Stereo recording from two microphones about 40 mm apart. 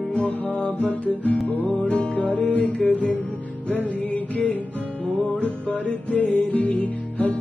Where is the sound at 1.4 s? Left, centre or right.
Left.